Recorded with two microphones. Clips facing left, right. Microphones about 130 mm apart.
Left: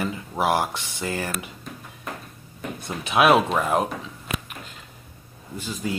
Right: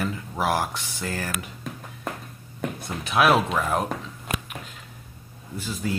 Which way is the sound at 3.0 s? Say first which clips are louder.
Left 2 dB; centre (ahead or behind).